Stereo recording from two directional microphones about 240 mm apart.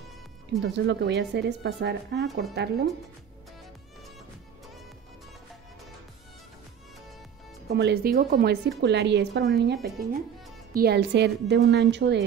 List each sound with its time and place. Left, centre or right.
0.6 s speech: right
7.7 s speech: right